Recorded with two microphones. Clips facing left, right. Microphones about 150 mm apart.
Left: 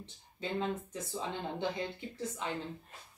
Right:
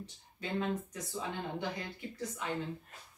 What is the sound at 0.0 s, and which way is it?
Speech, 25° left (ahead or behind).